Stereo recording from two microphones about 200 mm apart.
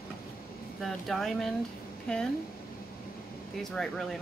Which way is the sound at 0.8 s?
Centre (ahead or behind).